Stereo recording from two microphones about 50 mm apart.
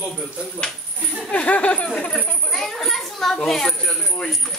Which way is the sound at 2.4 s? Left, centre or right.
Centre.